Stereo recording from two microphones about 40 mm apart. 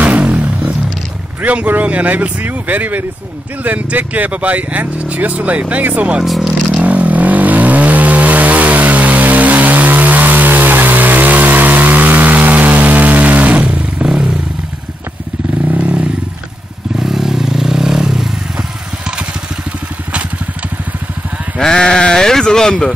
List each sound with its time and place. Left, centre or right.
0.3 s a sound: right
1.4 s speech: right
6.2 s zipper: centre
6.8 s vehicle: right
14.0 s a sound: centre
15.7 s motorcycle: right
17.0 s vehicle: centre
21.5 s speech: centre